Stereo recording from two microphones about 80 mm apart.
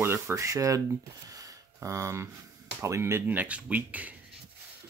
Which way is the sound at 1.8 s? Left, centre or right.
Right.